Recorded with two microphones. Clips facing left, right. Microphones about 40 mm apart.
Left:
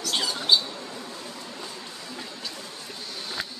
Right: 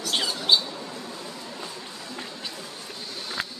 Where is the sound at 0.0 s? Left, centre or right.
Centre.